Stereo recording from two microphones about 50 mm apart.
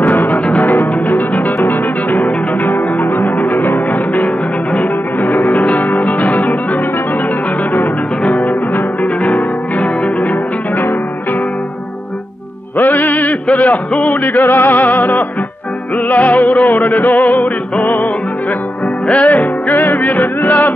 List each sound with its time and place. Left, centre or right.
0.0 s music: left
12.7 s music: left